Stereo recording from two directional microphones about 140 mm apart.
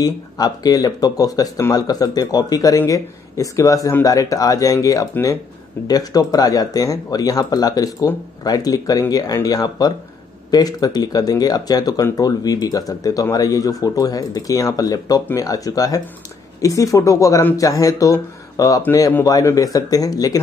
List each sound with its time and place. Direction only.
0.0 s speech: 25° left (ahead or behind)